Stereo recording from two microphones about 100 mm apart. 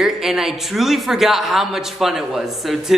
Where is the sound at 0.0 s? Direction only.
5° right (ahead or behind).